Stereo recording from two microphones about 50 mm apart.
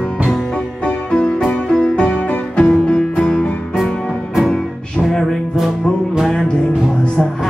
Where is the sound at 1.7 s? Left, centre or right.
Centre.